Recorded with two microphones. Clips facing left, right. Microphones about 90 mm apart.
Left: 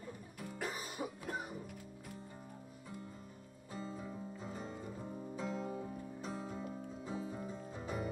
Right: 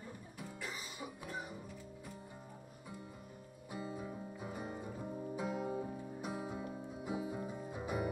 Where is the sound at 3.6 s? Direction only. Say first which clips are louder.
Right 1 dB; 15° right (ahead or behind).